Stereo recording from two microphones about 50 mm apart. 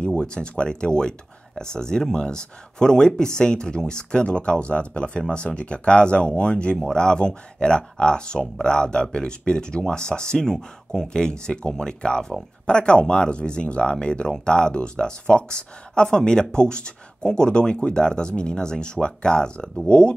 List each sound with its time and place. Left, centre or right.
0.0 s speech: centre